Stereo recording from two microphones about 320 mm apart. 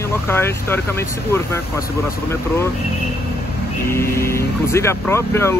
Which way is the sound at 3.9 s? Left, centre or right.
Centre.